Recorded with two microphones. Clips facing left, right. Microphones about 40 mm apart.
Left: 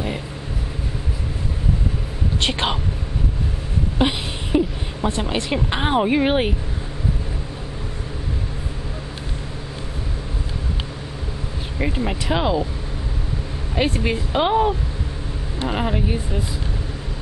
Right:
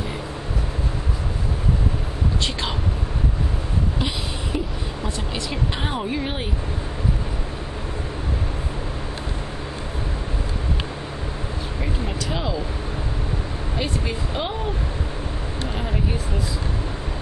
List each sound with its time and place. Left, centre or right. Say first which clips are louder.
2.4 s speech: left 4 dB; left
4.0 s a sound: left 5 dB; left
5.0 s speech: left 8 dB; left
12.1 s speech: left 7 dB; left
13.7 s speech: left 7 dB; left